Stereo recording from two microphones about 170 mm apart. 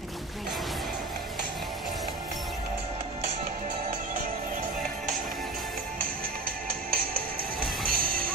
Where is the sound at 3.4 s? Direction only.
50° right (ahead or behind).